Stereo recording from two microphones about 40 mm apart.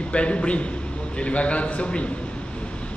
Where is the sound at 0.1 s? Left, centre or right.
Left.